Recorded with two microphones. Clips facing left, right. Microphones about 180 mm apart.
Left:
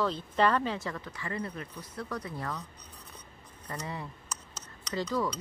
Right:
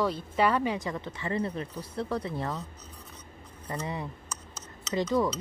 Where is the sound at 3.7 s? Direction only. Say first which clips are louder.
Right 4 dB; 20° right (ahead or behind).